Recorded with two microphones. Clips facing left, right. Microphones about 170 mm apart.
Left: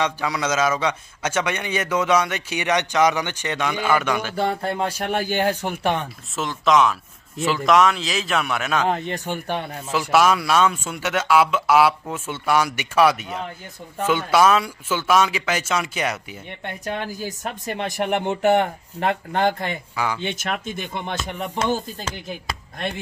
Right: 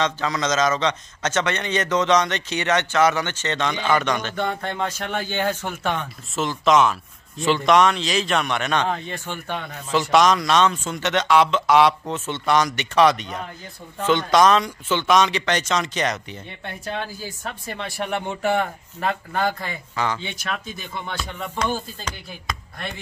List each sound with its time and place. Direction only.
0.0 s a man's voice: 10° left (ahead or behind)
4.4 s speech: 30° left (ahead or behind)
5.1 s a man's voice: 10° left (ahead or behind)
6.3 s a man's voice: centre (ahead or behind)
8.9 s speech: 40° left (ahead or behind)
9.8 s a man's voice: 5° left (ahead or behind)
17.4 s speech: 20° left (ahead or behind)
20.2 s speech: 60° left (ahead or behind)
20.9 s speech: 20° left (ahead or behind)